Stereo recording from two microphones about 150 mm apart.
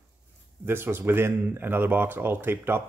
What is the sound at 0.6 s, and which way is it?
Speech, 15° right (ahead or behind).